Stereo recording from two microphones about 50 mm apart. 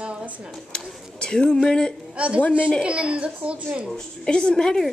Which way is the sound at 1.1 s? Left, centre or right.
Centre.